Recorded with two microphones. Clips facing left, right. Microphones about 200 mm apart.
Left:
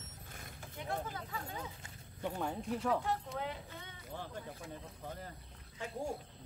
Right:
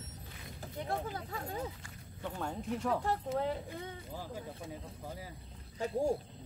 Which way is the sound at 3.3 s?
40° right (ahead or behind).